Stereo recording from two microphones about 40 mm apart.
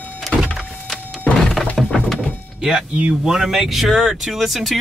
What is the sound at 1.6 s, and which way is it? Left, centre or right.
Breaking, centre.